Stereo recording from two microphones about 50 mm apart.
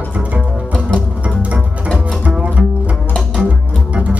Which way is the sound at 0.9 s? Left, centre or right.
Right.